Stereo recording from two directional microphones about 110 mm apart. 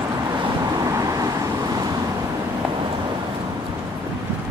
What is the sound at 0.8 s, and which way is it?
Vehicle, 30° right (ahead or behind).